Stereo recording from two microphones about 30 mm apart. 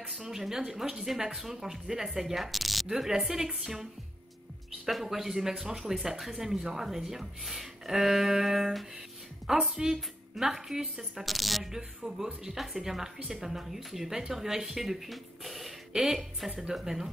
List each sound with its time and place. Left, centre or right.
0.4 s a woman's voice: centre
2.9 s a woman's voice: centre
4.8 s a woman's voice: centre
9.5 s a woman's voice: right
11.2 s a woman's voice: centre
15.9 s a woman's voice: right
16.3 s a woman's voice: centre